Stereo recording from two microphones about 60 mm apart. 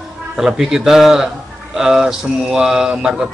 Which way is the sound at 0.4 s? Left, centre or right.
Centre.